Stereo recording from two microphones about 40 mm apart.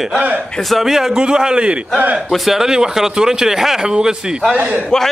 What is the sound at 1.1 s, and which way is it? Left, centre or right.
A man's voice, centre.